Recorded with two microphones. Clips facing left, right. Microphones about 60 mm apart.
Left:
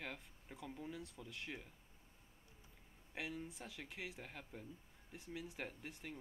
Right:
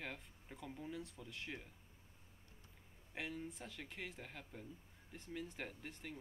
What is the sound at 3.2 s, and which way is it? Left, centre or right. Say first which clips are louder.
Speech: even; centre.